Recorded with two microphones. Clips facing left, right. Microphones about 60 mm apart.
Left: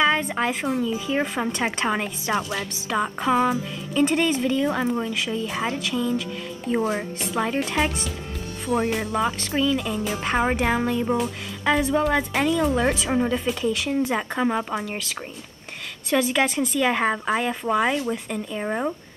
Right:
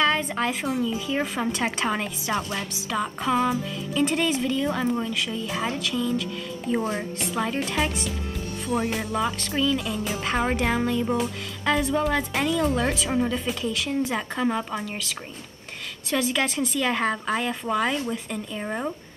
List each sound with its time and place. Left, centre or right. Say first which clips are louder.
0.0 s a woman's voice: left 2 dB; centre
8.6 s a woman's voice: left 3 dB; centre